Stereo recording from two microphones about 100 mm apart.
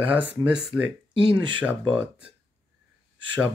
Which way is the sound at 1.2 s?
50° right (ahead or behind).